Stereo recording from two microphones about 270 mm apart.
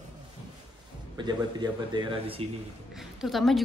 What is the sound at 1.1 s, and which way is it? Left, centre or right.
A man's voice, centre.